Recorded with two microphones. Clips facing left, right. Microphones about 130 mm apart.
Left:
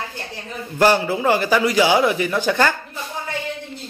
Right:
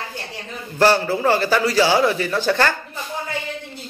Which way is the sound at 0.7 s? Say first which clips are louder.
Even; 15° left (ahead or behind).